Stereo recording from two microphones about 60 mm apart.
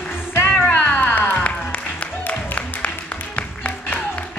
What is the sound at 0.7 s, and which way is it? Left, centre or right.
Cat, left.